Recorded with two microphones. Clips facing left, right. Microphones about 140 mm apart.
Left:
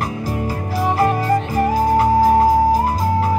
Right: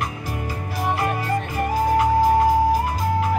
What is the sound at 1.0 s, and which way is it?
Music, 40° left (ahead or behind).